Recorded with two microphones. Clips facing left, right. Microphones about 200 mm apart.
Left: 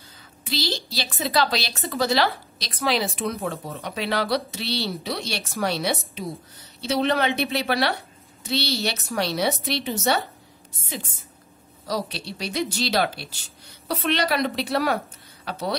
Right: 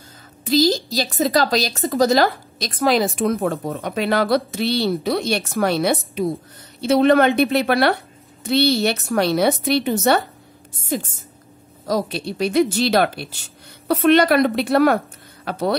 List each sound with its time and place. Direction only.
0.5 s a woman's voice: 45° right (ahead or behind)